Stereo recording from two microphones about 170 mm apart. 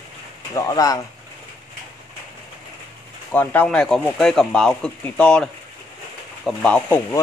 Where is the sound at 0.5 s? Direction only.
20° left (ahead or behind).